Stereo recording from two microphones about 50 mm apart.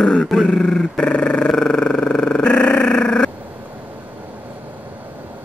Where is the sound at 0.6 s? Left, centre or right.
Centre.